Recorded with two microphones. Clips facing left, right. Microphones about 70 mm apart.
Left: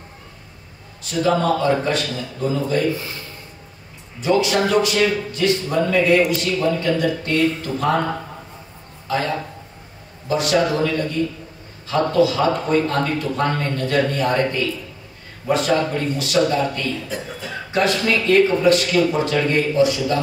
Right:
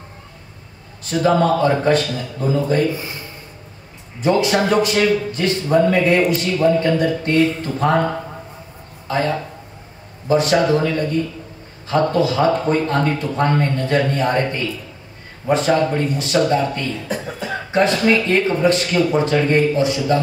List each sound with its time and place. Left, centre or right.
1.2 s speech: right
2.9 s speech: centre
4.2 s speech: right
9.0 s a sound: right
10.2 s speech: right